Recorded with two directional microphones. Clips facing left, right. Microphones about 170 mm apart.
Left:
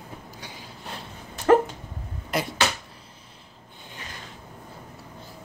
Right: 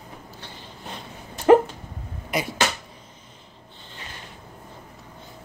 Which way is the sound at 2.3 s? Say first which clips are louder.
Right 1 dB; centre (ahead or behind).